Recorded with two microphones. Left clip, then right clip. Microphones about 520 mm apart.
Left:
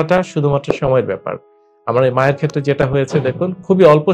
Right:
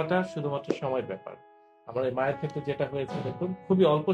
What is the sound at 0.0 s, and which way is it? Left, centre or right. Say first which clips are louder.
Speech: left 13 dB; left.